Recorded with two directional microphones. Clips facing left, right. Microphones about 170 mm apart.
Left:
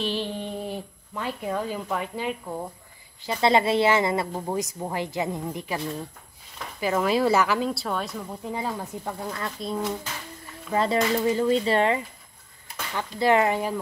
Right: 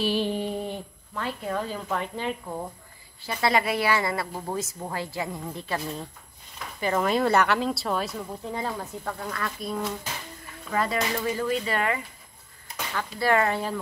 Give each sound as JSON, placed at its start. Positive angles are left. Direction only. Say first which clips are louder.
{"t": 0.0, "sound": "a sound", "louder": "right 3 dB", "side_deg": -10}
{"t": 1.1, "sound": "speech", "louder": "left 1 dB", "side_deg": 15}
{"t": 3.2, "sound": "a woman's voice", "louder": "left 3 dB", "side_deg": 20}
{"t": 6.8, "sound": "speech", "louder": "left 1 dB", "side_deg": 5}
{"t": 8.5, "sound": "a woman's voice", "louder": "left 1 dB", "side_deg": 10}